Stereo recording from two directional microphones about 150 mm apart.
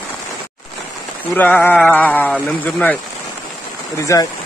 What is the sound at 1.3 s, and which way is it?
Speech, 10° left (ahead or behind).